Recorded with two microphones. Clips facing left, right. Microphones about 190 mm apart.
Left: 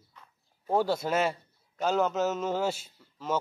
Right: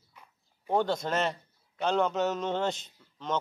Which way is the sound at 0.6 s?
5° left (ahead or behind).